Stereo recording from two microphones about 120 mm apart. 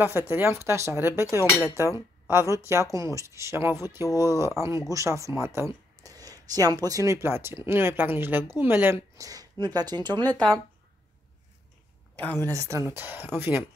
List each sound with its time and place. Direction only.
0.0 s speech: 20° right (ahead or behind)
9.1 s speech: 30° right (ahead or behind)
10.2 s speech: 10° left (ahead or behind)
12.2 s speech: 15° left (ahead or behind)
12.4 s speech: 25° right (ahead or behind)